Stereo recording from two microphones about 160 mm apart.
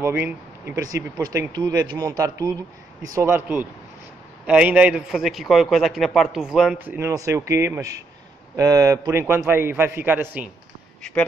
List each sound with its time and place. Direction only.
0.0 s a man's voice: 15° right (ahead or behind)
11.0 s speech: 5° left (ahead or behind)